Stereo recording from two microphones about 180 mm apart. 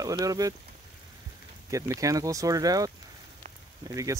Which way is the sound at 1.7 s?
15° right (ahead or behind).